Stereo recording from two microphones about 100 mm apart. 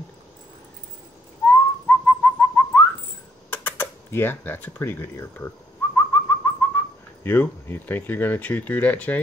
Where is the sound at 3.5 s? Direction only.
20° left (ahead or behind).